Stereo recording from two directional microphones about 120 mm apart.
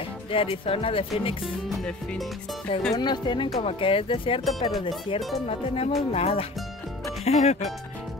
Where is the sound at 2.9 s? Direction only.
35° left (ahead or behind); by 7.6 s 65° left (ahead or behind).